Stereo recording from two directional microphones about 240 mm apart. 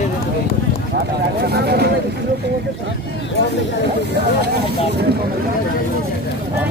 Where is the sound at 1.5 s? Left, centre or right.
Right.